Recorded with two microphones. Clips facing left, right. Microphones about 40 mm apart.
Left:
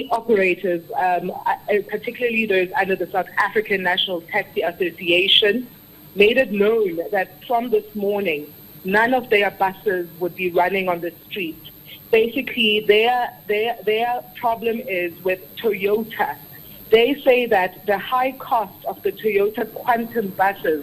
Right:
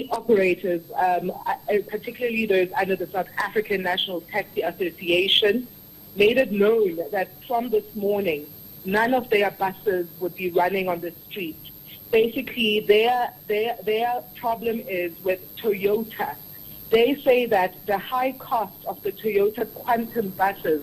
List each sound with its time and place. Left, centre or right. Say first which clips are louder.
0.0 s a man's voice: left 2 dB; left